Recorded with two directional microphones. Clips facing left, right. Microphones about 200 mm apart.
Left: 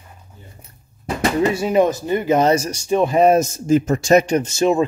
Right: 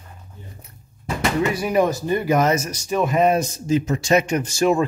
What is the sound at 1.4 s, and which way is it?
Speech, 25° left (ahead or behind).